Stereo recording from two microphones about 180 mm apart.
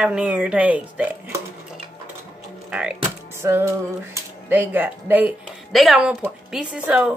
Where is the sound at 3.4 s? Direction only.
15° right (ahead or behind).